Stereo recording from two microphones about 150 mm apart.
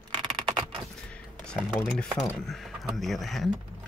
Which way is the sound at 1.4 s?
Centre (ahead or behind).